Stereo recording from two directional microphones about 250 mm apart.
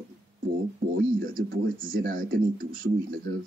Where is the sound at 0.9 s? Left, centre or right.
Right.